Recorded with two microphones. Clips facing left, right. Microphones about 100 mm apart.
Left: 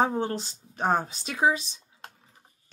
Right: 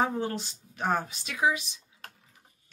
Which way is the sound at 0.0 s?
30° left (ahead or behind).